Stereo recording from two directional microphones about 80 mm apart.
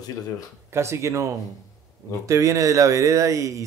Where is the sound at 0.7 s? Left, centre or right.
Right.